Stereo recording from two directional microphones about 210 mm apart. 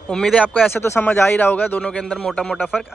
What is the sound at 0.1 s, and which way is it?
Speech, 5° left (ahead or behind).